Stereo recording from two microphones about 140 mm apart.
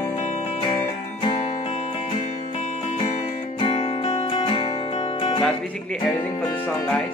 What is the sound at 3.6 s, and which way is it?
Music, 45° left (ahead or behind).